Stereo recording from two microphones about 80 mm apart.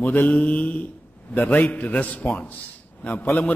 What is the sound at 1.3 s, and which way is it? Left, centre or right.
A man's voice, centre.